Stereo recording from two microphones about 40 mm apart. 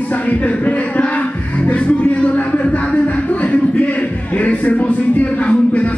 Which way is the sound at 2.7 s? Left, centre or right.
Left.